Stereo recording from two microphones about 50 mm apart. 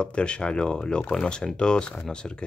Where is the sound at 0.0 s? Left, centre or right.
Left.